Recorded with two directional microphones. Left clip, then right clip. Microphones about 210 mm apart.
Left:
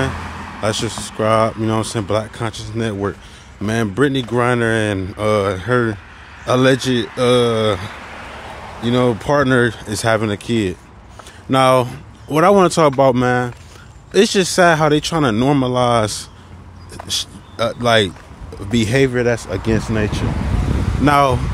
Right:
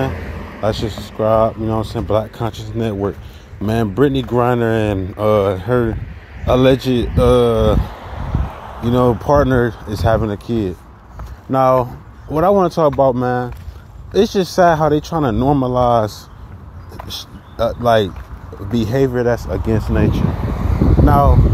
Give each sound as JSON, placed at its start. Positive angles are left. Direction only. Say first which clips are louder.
{"t": 0.1, "sound": "vehicle", "louder": "left 2 dB", "side_deg": 30}
{"t": 0.6, "sound": "speech", "louder": "right 1 dB", "side_deg": 5}
{"t": 2.1, "sound": "speech", "louder": "right 5 dB", "side_deg": -5}
{"t": 17.1, "sound": "speech", "louder": "left 9 dB", "side_deg": 10}